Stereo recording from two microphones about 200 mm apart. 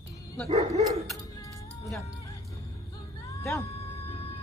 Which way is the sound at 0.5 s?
35° right (ahead or behind).